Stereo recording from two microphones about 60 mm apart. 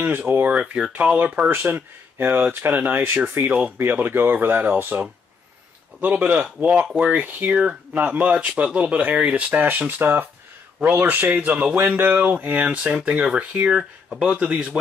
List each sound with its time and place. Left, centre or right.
0.3 s speech: right
0.6 s speech: centre
0.9 s speech: right
13.7 s speech: centre
14.2 s speech: right